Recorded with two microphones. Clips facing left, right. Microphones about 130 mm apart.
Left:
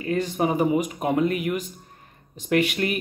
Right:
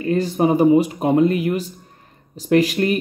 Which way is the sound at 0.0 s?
35° right (ahead or behind).